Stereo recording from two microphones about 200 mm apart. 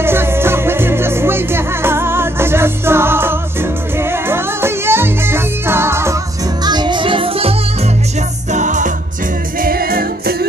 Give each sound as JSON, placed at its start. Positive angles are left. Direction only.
{"t": 0.0, "sound": "music", "side_deg": -10}
{"t": 8.5, "sound": "music", "side_deg": -35}